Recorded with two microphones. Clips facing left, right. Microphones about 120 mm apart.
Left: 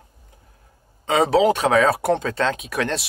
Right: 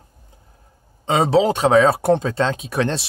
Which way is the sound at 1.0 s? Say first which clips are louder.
Even; 25° right (ahead or behind).